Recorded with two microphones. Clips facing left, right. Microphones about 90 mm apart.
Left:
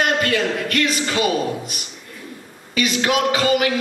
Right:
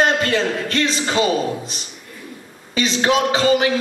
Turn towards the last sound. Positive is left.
turn(degrees=-30)  # may be behind; listen again after turning